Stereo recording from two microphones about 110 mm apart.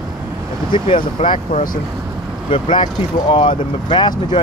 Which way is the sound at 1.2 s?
75° left (ahead or behind).